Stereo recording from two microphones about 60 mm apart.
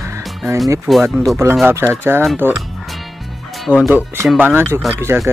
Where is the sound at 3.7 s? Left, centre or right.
Left.